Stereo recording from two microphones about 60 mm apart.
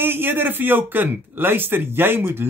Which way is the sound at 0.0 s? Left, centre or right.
Right.